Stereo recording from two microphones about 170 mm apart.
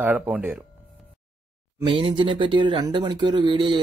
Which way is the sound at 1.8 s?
30° right (ahead or behind).